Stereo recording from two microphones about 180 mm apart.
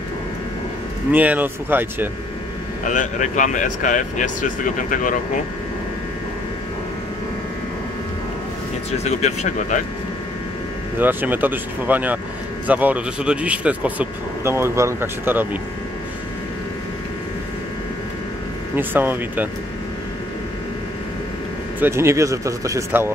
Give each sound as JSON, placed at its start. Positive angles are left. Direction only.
{"t": 1.1, "sound": "speech", "side_deg": -10}
{"t": 2.8, "sound": "speech", "side_deg": 45}
{"t": 9.0, "sound": "speech", "side_deg": 40}
{"t": 11.0, "sound": "speech", "side_deg": -10}
{"t": 18.8, "sound": "speech", "side_deg": -10}
{"t": 21.7, "sound": "speech", "side_deg": -15}